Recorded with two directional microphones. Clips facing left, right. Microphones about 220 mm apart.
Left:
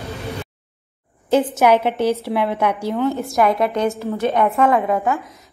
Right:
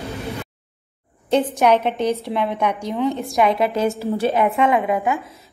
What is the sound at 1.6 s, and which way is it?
A woman's voice, 10° left (ahead or behind).